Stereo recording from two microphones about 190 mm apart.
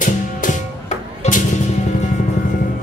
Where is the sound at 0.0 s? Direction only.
45° left (ahead or behind).